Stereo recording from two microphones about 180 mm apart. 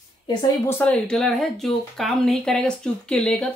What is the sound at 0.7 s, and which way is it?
Speech, 5° left (ahead or behind).